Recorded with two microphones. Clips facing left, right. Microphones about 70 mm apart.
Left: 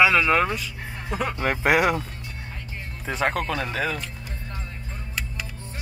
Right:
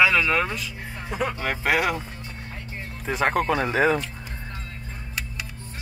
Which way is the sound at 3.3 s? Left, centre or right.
Centre.